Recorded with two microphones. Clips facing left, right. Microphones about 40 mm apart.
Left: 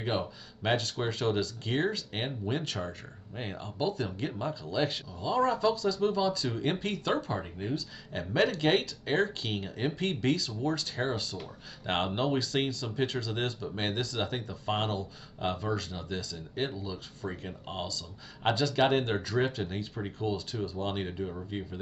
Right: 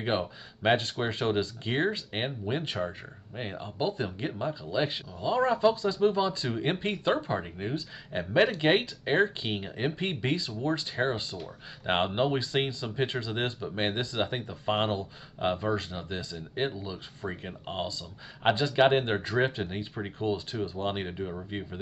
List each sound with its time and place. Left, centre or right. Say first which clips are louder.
0.0 s speech: right 2 dB; right